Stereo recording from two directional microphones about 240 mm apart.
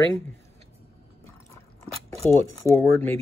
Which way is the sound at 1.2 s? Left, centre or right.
Centre.